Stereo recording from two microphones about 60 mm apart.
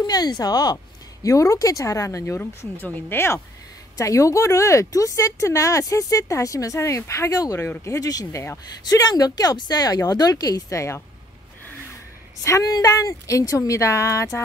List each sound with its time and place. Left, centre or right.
0.0 s speech: left
1.2 s speech: left
2.8 s speech: left
4.0 s speech: left
6.8 s speech: left
7.8 s speech: left
12.4 s speech: left